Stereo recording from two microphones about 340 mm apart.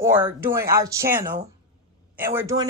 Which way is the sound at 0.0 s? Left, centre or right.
Centre.